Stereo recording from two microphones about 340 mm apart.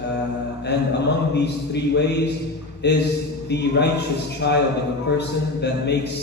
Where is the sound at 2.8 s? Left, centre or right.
Left.